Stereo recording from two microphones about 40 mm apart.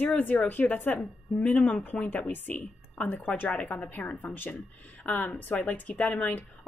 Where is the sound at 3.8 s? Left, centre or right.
Left.